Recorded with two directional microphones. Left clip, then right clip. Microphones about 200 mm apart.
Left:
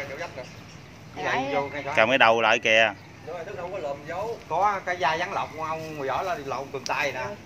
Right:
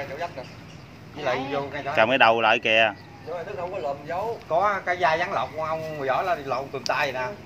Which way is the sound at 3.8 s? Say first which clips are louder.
Right 3 dB; 40° right (ahead or behind).